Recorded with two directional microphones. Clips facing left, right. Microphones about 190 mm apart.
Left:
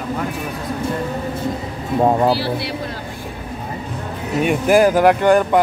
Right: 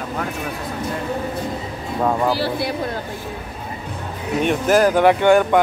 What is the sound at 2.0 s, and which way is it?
Speech, 25° left (ahead or behind).